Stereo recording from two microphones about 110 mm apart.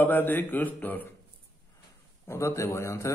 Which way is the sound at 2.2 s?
25° left (ahead or behind).